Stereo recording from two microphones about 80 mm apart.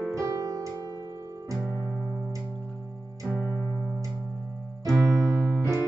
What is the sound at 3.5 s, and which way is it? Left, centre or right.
Music, centre.